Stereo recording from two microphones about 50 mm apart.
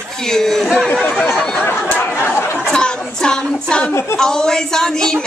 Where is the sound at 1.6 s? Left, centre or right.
Left.